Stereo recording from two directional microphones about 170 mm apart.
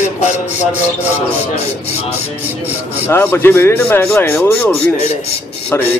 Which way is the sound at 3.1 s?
15° left (ahead or behind).